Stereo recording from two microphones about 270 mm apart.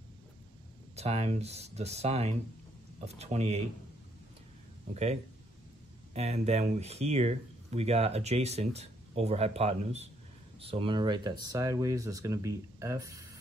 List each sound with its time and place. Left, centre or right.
0.9 s speech: right
4.9 s speech: right